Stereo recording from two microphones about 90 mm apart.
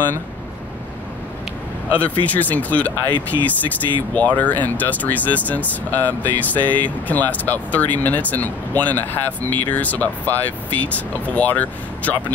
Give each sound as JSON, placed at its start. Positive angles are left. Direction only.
{"t": 1.9, "sound": "speech", "side_deg": 15}